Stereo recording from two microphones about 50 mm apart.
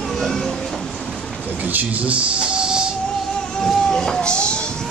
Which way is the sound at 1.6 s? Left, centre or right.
Right.